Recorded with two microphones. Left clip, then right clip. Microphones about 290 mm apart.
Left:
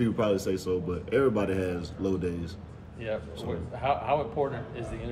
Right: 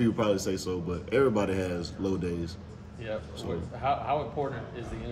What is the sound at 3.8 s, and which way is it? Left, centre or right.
Speech, left.